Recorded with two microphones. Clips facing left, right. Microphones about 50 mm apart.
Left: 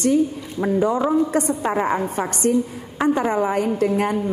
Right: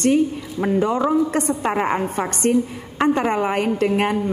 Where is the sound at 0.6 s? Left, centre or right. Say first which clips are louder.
Even; centre.